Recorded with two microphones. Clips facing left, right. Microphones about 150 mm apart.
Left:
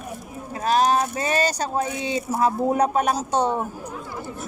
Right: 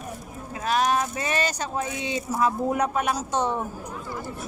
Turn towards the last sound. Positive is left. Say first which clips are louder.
# left 3 dB
turn(degrees=35)  # may be behind; listen again after turning